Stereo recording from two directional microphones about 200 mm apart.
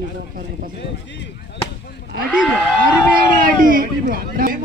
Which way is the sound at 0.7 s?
60° left (ahead or behind).